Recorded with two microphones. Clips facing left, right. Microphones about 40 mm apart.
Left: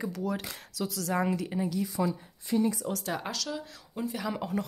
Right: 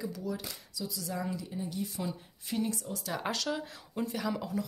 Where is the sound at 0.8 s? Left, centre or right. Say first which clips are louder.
Left 7 dB; left.